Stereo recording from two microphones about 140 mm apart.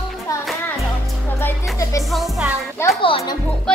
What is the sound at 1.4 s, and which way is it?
Music, 20° left (ahead or behind).